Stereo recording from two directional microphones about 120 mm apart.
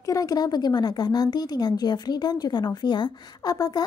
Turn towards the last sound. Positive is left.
turn(degrees=30)  # may be behind; listen again after turning